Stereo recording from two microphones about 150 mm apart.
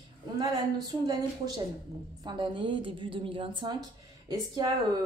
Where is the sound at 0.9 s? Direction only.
25° right (ahead or behind).